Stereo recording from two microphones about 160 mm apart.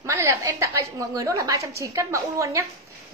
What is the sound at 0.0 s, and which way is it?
A woman's voice, 15° right (ahead or behind).